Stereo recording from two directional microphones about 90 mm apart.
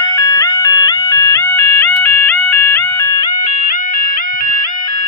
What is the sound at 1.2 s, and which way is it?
Music, 25° left (ahead or behind).